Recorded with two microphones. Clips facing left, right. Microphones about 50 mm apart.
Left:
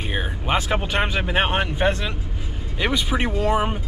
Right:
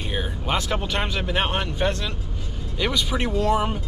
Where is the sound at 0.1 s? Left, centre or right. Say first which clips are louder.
Left 2 dB; left.